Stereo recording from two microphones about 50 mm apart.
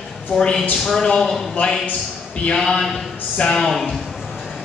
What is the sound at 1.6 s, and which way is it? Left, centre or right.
Speech, left.